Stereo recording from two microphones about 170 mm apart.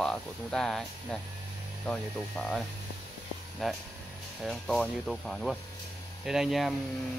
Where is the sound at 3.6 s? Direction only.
Centre (ahead or behind).